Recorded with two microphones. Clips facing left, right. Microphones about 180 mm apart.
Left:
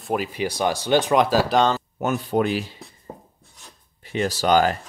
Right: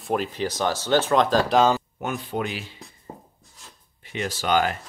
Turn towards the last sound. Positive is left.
turn(degrees=40)  # may be behind; listen again after turning